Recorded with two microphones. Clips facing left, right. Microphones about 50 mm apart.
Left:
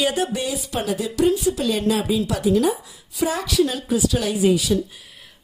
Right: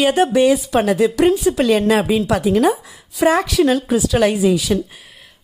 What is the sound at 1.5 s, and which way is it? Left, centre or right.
A woman's voice, right.